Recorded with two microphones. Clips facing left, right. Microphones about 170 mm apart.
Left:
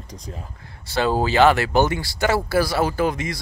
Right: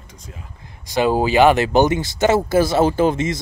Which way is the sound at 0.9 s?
15° right (ahead or behind).